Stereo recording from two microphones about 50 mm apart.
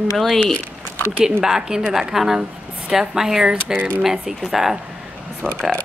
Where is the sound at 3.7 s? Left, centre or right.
Right.